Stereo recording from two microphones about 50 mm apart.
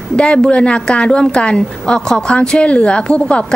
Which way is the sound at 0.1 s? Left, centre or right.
Centre.